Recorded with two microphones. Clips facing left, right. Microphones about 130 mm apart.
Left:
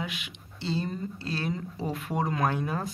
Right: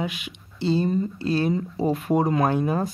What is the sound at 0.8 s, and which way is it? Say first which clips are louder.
Speech: right 10 dB; 25° right (ahead or behind).